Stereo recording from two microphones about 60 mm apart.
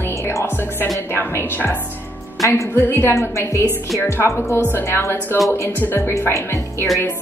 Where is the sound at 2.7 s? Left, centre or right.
Left.